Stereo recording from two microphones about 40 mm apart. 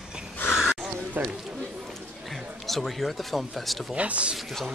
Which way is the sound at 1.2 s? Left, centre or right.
Right.